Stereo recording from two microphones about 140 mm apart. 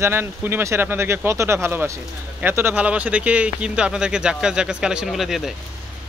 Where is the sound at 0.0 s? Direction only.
15° right (ahead or behind).